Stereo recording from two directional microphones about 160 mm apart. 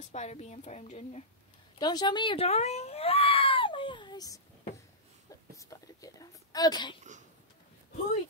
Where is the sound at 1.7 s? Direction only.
25° left (ahead or behind).